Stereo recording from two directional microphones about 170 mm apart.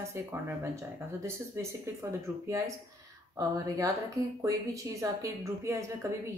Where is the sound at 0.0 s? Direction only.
15° right (ahead or behind).